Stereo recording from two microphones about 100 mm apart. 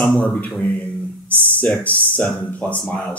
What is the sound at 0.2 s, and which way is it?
Speech, 15° left (ahead or behind).